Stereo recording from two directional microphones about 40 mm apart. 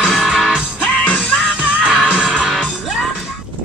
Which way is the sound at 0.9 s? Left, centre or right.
Left.